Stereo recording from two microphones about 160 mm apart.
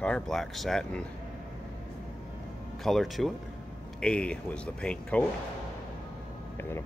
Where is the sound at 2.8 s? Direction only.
Centre (ahead or behind).